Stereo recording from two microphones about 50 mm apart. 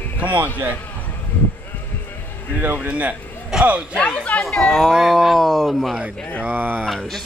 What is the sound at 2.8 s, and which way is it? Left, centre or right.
Speech, right.